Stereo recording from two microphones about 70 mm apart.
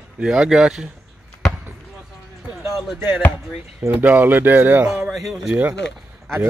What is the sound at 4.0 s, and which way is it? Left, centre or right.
Speech, right.